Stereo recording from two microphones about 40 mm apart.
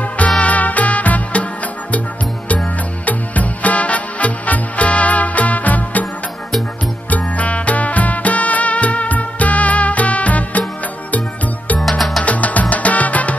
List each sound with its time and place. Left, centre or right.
0.4 s music: left
3.1 s music: left
7.1 s music: left